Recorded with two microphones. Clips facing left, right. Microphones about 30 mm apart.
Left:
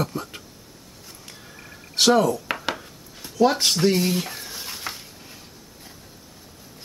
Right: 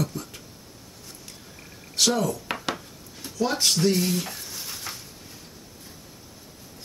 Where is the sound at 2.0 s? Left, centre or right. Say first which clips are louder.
Left 6 dB; left.